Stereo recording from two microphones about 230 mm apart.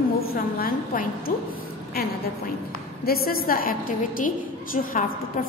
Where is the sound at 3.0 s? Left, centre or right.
Left.